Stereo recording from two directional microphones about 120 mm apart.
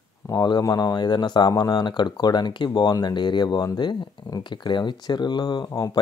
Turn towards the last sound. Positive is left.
turn(degrees=30)  # may be behind; listen again after turning